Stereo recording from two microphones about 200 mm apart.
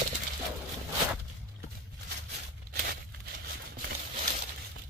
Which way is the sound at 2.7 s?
55° right (ahead or behind).